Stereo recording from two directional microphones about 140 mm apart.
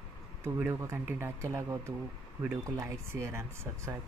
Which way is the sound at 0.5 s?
15° right (ahead or behind).